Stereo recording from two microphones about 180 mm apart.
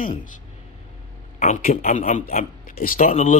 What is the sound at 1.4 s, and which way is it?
Speech, 40° left (ahead or behind).